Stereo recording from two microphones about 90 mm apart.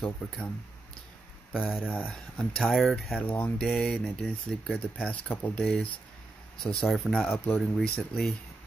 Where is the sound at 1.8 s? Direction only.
20° left (ahead or behind).